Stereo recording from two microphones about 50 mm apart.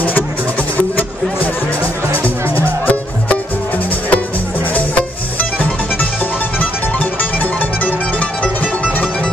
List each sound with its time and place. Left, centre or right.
0.0 s music: left
2.5 s music: left